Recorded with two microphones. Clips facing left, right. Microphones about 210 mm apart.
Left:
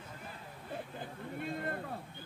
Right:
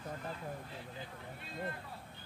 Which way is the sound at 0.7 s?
55° left (ahead or behind).